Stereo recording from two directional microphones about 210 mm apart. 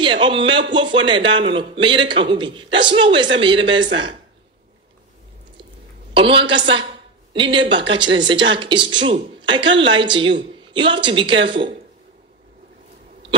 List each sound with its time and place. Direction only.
0.0 s speech: 25° right (ahead or behind)
6.1 s speech: 25° right (ahead or behind)